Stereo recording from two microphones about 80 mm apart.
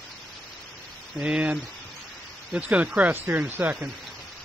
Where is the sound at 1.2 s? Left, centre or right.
Centre.